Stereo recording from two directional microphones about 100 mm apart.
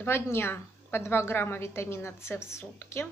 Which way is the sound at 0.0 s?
25° left (ahead or behind).